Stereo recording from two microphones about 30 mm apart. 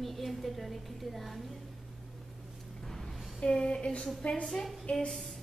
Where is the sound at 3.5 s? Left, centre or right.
Left.